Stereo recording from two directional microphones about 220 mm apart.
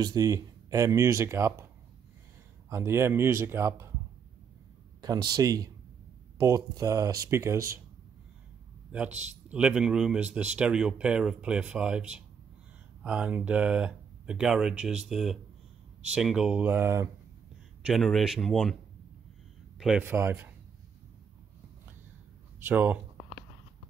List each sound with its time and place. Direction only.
0.0 s speech: 15° right (ahead or behind)
2.7 s speech: 10° right (ahead or behind)
5.0 s speech: 15° right (ahead or behind)
9.5 s speech: 5° right (ahead or behind)
17.8 s speech: centre (ahead or behind)
19.8 s speech: 5° right (ahead or behind)
22.6 s speech: 10° right (ahead or behind)